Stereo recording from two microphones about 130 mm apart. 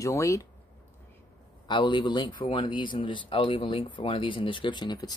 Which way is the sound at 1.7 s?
40° left (ahead or behind).